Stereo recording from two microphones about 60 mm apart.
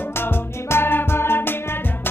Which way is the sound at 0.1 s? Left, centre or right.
Left.